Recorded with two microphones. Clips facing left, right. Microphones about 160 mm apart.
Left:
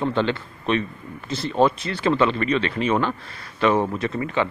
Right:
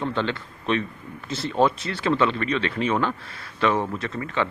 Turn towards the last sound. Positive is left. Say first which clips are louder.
# left 4 dB
turn(degrees=10)  # may be behind; listen again after turning